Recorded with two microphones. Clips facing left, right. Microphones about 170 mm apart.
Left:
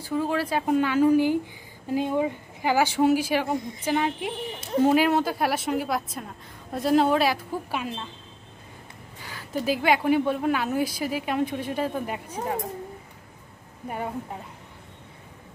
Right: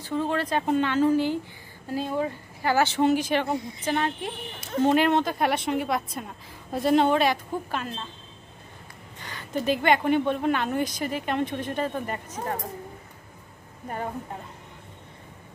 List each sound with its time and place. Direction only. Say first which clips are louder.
0.0 s a woman's voice: left 1 dB; 5° left (ahead or behind)
9.2 s a woman's voice: even; 5° left (ahead or behind)
13.8 s speech: left 1 dB; 10° left (ahead or behind)